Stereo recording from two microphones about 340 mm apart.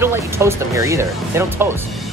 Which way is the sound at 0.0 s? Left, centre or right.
Centre.